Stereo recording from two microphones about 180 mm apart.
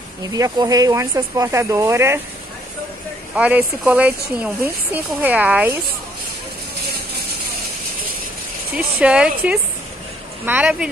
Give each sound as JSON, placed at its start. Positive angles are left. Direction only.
{"t": 0.3, "sound": "speech", "side_deg": -20}
{"t": 3.3, "sound": "speech", "side_deg": -10}
{"t": 8.7, "sound": "a woman's voice", "side_deg": -5}